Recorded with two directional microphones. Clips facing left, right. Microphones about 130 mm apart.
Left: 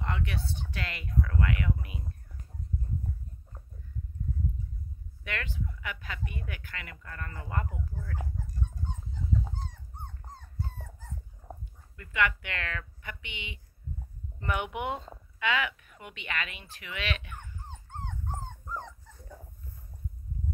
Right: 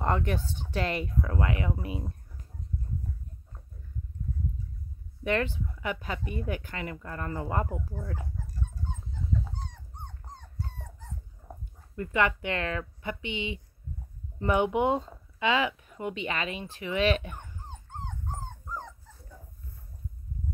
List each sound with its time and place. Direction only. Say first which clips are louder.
0.0 s speech: right 7 dB; 40° right (ahead or behind)
5.2 s speech: right 9 dB; 35° right (ahead or behind)
12.0 s speech: right 3 dB; 35° right (ahead or behind)